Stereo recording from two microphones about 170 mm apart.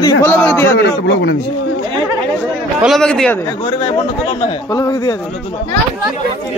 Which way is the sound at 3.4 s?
25° left (ahead or behind).